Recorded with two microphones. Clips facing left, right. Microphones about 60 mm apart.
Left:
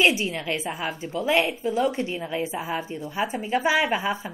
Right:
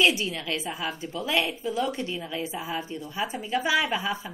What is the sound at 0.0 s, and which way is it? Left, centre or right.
A woman's voice, left.